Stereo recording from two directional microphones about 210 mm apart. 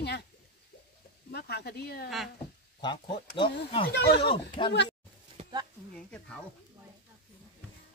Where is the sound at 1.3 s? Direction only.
50° left (ahead or behind).